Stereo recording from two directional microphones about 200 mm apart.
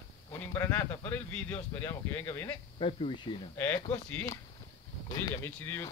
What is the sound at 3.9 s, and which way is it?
Speech, 10° left (ahead or behind).